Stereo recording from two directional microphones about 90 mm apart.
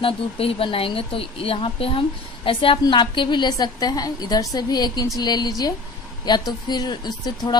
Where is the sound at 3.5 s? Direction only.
45° left (ahead or behind).